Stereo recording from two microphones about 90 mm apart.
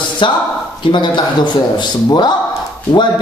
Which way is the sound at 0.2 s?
65° left (ahead or behind).